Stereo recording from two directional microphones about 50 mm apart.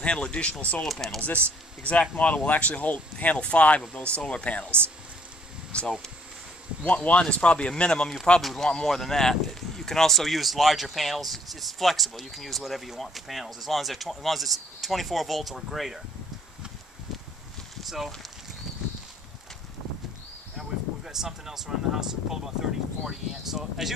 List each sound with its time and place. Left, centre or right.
0.0 s speech: left
8.4 s speech: centre
17.7 s a sound: centre
20.5 s speech: centre